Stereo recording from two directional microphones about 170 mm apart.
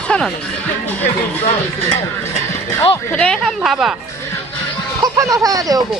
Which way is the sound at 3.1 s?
5° left (ahead or behind).